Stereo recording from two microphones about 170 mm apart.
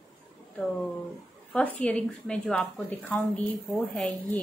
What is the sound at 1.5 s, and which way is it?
Speech, 5° left (ahead or behind).